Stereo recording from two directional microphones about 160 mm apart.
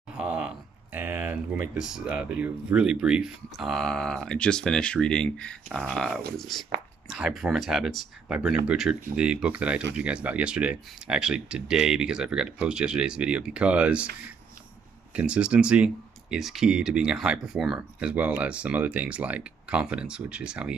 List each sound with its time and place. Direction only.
0.1 s a sound: 5° right (ahead or behind)
0.9 s speech: 10° right (ahead or behind)
15.1 s speech: 5° right (ahead or behind)